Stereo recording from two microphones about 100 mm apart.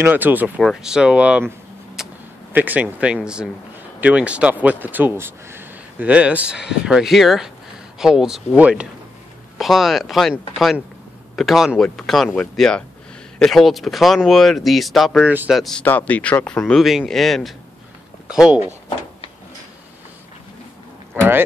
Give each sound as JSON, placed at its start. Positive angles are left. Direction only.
{"t": 0.0, "sound": "speech", "side_deg": -20}
{"t": 0.6, "sound": "speech", "side_deg": -5}
{"t": 2.0, "sound": "a sound", "side_deg": -5}
{"t": 2.5, "sound": "speech", "side_deg": -15}
{"t": 9.6, "sound": "speech", "side_deg": 0}
{"t": 11.3, "sound": "speech", "side_deg": 0}
{"t": 15.2, "sound": "speech", "side_deg": -15}
{"t": 15.5, "sound": "speech", "side_deg": 0}
{"t": 15.8, "sound": "speech", "side_deg": 20}
{"t": 16.8, "sound": "speech", "side_deg": 0}
{"t": 21.2, "sound": "vehicle", "side_deg": -20}